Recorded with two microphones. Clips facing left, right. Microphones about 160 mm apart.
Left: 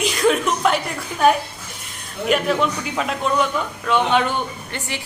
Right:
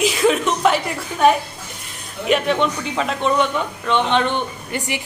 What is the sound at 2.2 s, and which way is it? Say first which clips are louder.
A man's voice: right 1 dB; centre (ahead or behind).